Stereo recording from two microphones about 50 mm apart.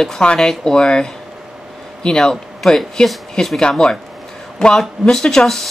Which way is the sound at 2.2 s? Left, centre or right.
Centre.